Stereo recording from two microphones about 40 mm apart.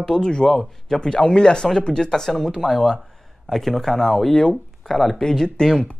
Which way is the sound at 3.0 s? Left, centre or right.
Centre.